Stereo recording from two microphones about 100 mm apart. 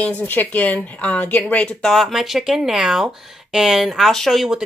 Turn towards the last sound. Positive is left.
turn(degrees=0)  # may be behind; listen again after turning